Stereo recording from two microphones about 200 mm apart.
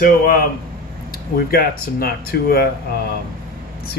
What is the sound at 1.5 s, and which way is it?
Speech, 50° left (ahead or behind).